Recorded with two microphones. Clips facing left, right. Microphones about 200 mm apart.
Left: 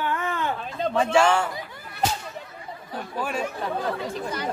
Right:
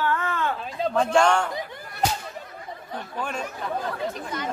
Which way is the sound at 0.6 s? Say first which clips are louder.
Even; centre (ahead or behind).